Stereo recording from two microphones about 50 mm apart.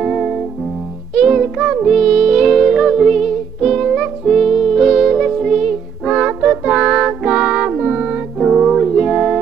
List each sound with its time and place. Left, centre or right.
0.0 s music: centre
1.9 s music: centre